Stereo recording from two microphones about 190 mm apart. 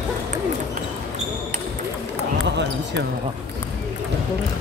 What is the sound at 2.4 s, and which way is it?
Basketball bounce, 65° right (ahead or behind).